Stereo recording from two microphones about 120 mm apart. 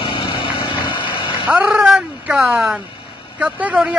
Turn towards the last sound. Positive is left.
turn(degrees=-10)  # may be behind; listen again after turning